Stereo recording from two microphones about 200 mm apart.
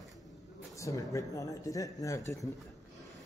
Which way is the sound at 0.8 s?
15° left (ahead or behind).